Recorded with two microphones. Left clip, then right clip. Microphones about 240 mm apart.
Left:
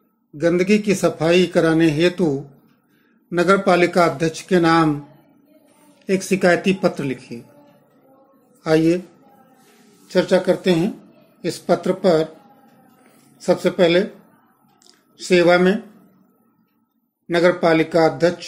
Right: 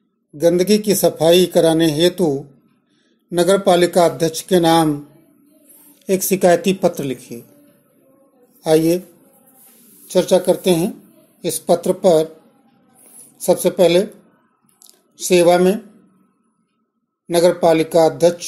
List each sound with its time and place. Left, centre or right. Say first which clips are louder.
0.4 s speech: right 3 dB; centre
6.0 s speech: right 3 dB; centre
8.6 s speech: right 2 dB; centre
10.0 s speech: right 2 dB; centre
13.4 s speech: right 3 dB; centre
17.3 s speech: right 2 dB; centre